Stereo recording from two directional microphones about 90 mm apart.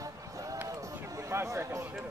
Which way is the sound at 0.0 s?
40° right (ahead or behind).